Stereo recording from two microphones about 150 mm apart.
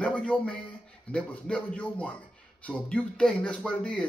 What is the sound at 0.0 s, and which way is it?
A man's voice, 5° left (ahead or behind).